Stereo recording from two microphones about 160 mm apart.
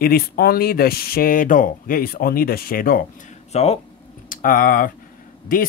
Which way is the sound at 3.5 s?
40° left (ahead or behind).